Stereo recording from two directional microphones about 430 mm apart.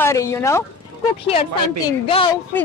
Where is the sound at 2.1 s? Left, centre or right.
Centre.